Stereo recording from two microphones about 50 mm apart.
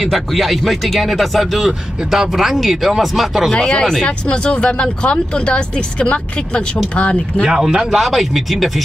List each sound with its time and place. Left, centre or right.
0.0 s speech: centre
3.5 s speech: centre
7.4 s speech: centre